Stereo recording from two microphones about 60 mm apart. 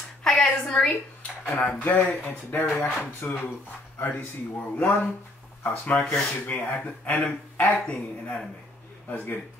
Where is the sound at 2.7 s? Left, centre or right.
Left.